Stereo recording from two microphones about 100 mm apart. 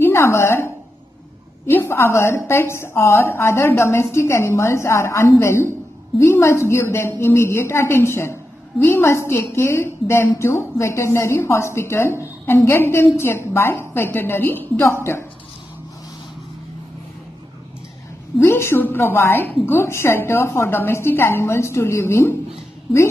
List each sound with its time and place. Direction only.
0.0 s a woman's voice: 25° left (ahead or behind)
1.7 s a woman's voice: 25° left (ahead or behind)
18.4 s a woman's voice: 25° left (ahead or behind)